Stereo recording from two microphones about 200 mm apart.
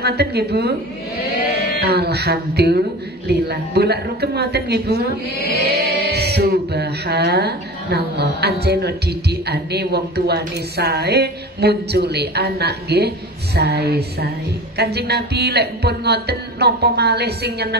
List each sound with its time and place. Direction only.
0.0 s a woman's voice: 55° right (ahead or behind)
1.9 s a woman's voice: 55° right (ahead or behind)